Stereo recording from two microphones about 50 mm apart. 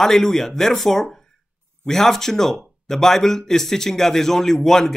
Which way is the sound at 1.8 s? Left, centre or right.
Centre.